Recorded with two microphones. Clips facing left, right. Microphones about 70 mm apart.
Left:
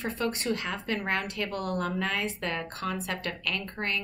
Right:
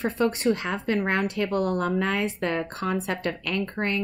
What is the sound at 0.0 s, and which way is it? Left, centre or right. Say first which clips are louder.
Speech: right 7 dB; right.